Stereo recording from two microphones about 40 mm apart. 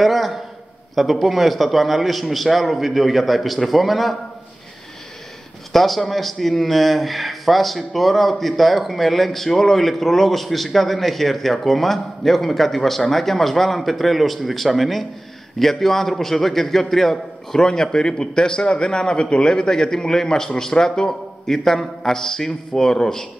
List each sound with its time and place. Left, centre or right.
0.0 s a sound: centre
0.9 s speech: centre
5.7 s a man's voice: centre